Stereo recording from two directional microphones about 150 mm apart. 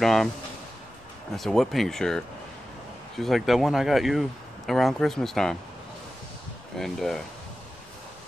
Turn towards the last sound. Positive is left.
turn(degrees=0)  # may be behind; listen again after turning